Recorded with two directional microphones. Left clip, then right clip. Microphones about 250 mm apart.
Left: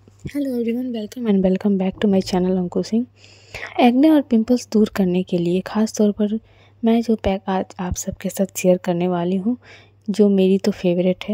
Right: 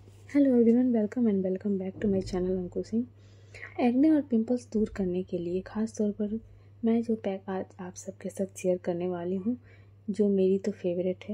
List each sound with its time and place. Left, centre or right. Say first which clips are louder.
0.3 s a woman's voice: even; centre
1.0 s speech: left 8 dB; left